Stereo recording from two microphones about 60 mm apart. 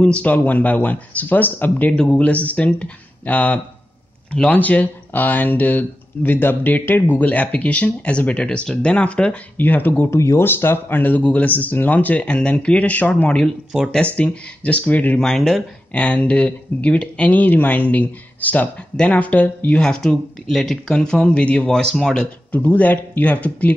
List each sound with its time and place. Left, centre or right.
0.0 s speech: left
9.6 s speech: left
10.1 s speech: left
10.4 s speech: left
15.1 s speech: centre
15.9 s speech: left
19.8 s speech: centre
22.5 s speech: left